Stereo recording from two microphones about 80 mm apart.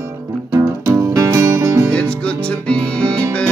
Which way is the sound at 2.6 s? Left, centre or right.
Centre.